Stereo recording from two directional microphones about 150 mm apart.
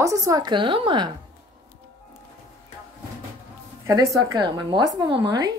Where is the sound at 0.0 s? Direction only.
20° right (ahead or behind).